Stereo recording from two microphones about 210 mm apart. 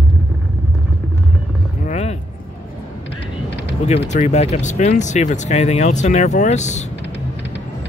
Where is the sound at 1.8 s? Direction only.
30° left (ahead or behind).